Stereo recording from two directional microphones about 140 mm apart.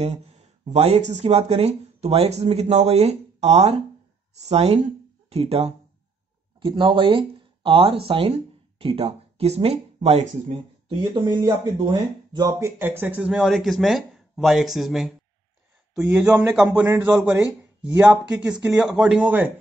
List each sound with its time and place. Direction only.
0.0 s speech: 50° right (ahead or behind)
10.9 s speech: 30° right (ahead or behind); by 19.5 s 10° right (ahead or behind)